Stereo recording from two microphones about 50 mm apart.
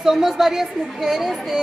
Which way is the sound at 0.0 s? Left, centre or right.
Centre.